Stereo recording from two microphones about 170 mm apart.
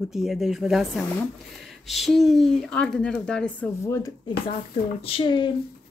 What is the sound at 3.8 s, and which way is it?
Speech, 15° left (ahead or behind).